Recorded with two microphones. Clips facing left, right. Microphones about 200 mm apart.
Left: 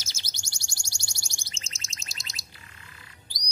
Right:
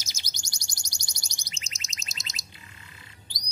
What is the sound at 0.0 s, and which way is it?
Bird, 15° right (ahead or behind).